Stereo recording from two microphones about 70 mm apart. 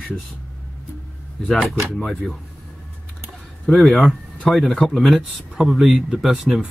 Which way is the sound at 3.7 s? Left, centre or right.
Centre.